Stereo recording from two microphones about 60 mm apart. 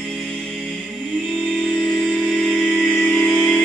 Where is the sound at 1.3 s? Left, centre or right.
Centre.